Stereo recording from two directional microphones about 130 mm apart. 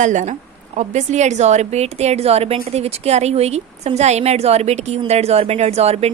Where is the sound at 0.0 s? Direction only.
70° right (ahead or behind).